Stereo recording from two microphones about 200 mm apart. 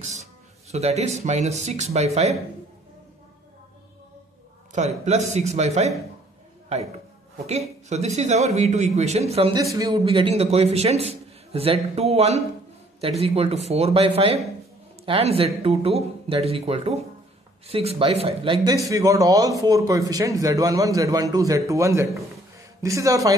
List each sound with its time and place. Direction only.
0.7 s a man's voice: 30° right (ahead or behind)
4.7 s a man's voice: 35° right (ahead or behind)
7.4 s a man's voice: 30° right (ahead or behind); by 23.3 s 15° right (ahead or behind)